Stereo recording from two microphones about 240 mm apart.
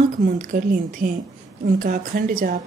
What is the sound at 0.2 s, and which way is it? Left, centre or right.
A woman's voice, right.